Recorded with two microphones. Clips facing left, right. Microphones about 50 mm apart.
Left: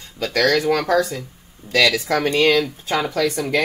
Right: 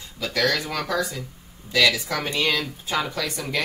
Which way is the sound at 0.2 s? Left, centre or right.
Left.